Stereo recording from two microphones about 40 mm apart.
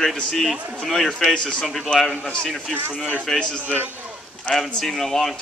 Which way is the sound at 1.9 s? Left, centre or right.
Left.